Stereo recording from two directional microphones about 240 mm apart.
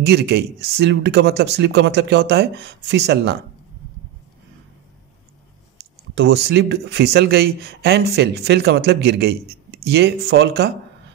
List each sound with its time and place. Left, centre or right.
0.0 s speech: right
5.8 s speech: right